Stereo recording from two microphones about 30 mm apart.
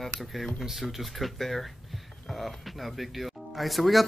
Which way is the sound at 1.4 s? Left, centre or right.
Centre.